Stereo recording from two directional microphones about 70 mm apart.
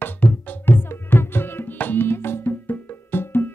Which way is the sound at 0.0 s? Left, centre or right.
Left.